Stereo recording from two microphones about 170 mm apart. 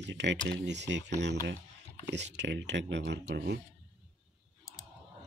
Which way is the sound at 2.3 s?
90° right.